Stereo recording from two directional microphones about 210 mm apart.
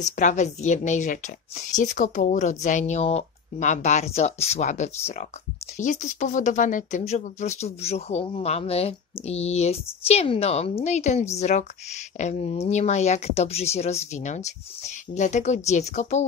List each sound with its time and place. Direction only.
0.0 s speech: 35° left (ahead or behind)